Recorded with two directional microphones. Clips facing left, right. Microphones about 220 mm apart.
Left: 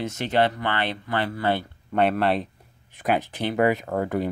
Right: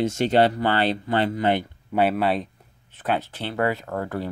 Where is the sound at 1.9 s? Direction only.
5° right (ahead or behind).